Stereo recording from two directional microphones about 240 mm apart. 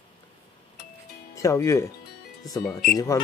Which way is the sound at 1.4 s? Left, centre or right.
Centre.